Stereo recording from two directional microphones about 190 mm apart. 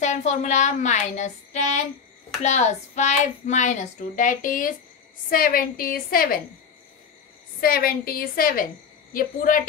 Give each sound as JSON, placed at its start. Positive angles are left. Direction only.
{"t": 0.0, "sound": "a woman's voice", "side_deg": 35}
{"t": 7.6, "sound": "a woman's voice", "side_deg": 50}